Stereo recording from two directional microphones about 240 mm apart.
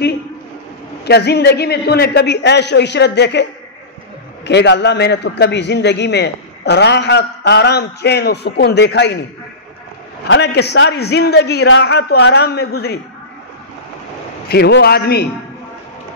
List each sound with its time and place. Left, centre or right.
1.0 s a man's voice: left
4.5 s a man's voice: left
10.2 s a man's voice: left
14.5 s a man's voice: left